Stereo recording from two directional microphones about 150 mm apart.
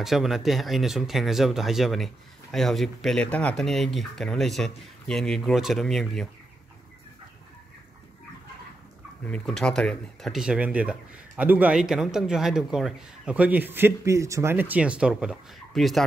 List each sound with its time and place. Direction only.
0.0 s speech: centre (ahead or behind)
9.2 s speech: 5° left (ahead or behind)